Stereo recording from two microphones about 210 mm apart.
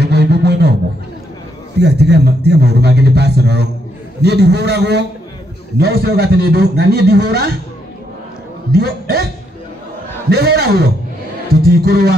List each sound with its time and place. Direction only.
0.0 s beatboxing: 50° right (ahead or behind)
1.8 s a man's voice: 50° right (ahead or behind)
8.7 s a man's voice: 45° right (ahead or behind)
10.3 s a man's voice: 50° right (ahead or behind)